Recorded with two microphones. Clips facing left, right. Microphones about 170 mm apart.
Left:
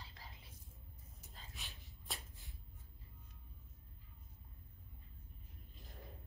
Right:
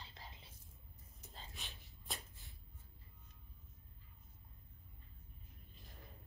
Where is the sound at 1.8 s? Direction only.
Centre (ahead or behind).